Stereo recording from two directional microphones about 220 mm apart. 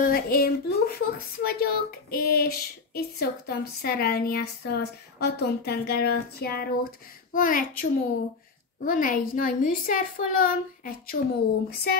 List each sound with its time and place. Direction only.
0.0 s a woman's voice: 40° left (ahead or behind)